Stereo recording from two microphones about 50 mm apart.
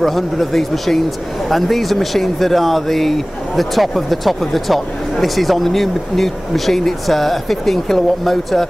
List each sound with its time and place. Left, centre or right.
0.0 s speech: centre